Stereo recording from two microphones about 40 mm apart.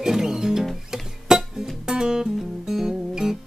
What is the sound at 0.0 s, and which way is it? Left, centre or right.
Music, centre.